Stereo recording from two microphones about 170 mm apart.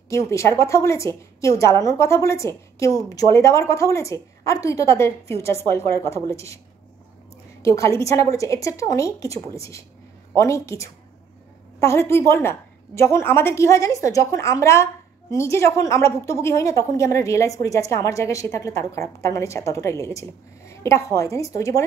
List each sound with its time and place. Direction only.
0.1 s a woman's voice: 15° left (ahead or behind)
7.6 s a woman's voice: 15° left (ahead or behind)